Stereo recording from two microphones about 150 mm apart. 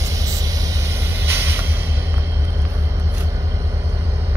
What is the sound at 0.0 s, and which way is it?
Vehicle, 20° right (ahead or behind).